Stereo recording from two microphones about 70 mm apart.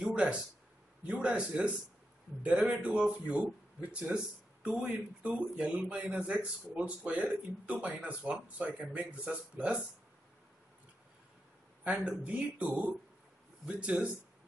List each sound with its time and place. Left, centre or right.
0.1 s speech: centre
11.8 s speech: centre